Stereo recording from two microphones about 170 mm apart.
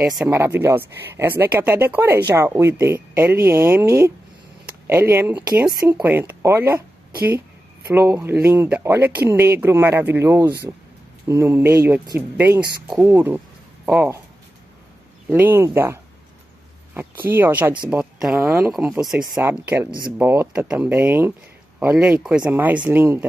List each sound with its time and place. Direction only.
0.3 s speech: 15° right (ahead or behind)
7.9 s speech: 15° right (ahead or behind)
15.2 s speech: 10° right (ahead or behind)